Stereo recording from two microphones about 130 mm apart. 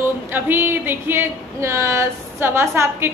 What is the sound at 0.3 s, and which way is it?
A woman's voice, 15° right (ahead or behind).